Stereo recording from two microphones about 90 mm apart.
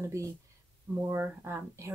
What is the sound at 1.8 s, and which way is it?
Speech, 35° right (ahead or behind).